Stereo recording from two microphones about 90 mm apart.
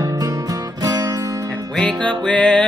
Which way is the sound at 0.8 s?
45° right (ahead or behind).